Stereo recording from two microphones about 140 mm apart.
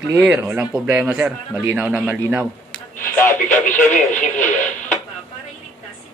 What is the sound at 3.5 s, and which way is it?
Speech, 60° left (ahead or behind).